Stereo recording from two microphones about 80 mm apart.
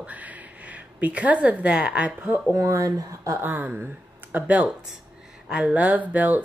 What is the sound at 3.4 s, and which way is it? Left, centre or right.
Speech, right.